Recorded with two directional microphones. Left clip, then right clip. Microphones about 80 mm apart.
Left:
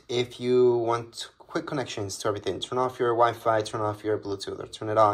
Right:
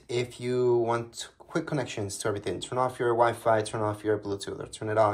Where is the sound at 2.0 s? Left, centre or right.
Left.